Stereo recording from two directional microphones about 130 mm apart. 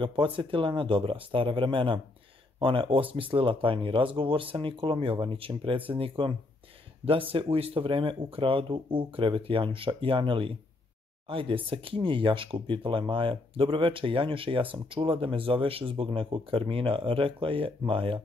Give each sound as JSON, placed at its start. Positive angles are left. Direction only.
{"t": 0.0, "sound": "speech", "side_deg": -40}